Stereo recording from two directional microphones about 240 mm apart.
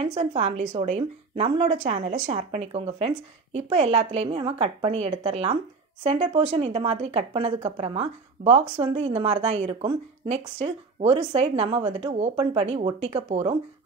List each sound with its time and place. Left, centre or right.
0.0 s speech: right